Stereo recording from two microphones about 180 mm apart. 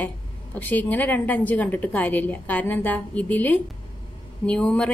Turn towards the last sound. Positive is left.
turn(degrees=5)  # may be behind; listen again after turning